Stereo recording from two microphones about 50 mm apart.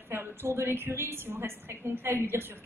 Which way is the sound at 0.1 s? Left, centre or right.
Right.